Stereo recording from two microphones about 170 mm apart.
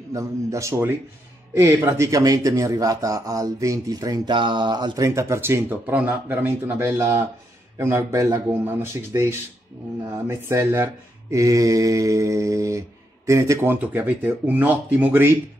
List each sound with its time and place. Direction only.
0.1 s speech: 20° right (ahead or behind)